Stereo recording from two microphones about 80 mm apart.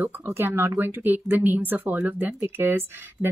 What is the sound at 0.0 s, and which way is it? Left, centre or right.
A woman's voice, right.